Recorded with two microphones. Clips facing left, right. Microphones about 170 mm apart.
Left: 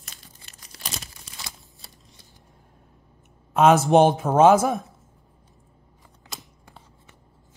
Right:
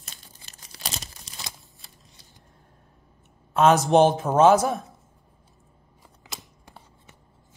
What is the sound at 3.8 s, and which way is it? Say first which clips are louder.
Speech: left 1 dB; 15° left (ahead or behind).